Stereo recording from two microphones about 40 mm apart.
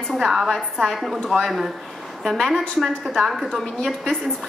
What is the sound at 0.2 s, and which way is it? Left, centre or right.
A woman's voice, centre.